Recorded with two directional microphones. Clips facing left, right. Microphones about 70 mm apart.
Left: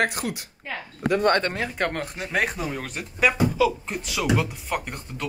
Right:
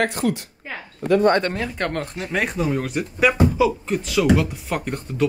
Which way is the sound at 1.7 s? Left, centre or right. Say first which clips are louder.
Right 2 dB; centre.